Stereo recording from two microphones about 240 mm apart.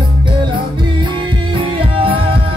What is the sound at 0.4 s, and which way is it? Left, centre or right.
Music, centre.